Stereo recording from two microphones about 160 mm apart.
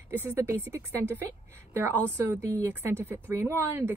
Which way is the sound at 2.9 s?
15° right (ahead or behind).